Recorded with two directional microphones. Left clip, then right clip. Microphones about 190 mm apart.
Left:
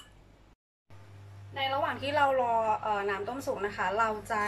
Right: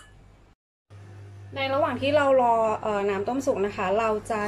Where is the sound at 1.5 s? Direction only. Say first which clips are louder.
Right 5 dB; 15° right (ahead or behind).